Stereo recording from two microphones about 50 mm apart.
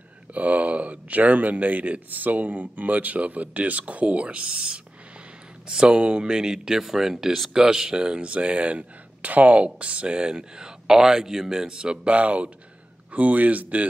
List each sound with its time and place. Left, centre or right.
0.3 s speech: right